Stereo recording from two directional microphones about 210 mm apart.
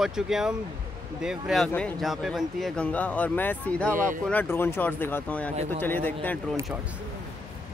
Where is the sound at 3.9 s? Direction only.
40° right (ahead or behind).